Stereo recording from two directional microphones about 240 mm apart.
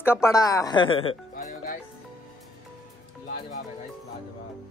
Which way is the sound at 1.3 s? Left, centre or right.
Left.